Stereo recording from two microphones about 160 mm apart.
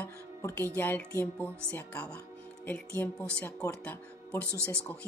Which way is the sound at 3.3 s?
10° left (ahead or behind).